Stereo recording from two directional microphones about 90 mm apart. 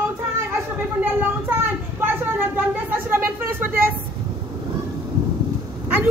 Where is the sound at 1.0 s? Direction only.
20° right (ahead or behind).